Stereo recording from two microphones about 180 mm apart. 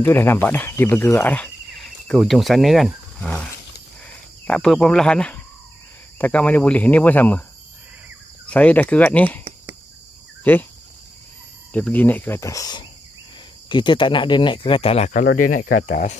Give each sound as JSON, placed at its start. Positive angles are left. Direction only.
{"t": 0.0, "sound": "speech", "side_deg": 10}
{"t": 4.5, "sound": "speech", "side_deg": 5}
{"t": 8.5, "sound": "speech", "side_deg": 10}
{"t": 10.4, "sound": "speech", "side_deg": 10}
{"t": 11.7, "sound": "speech", "side_deg": 10}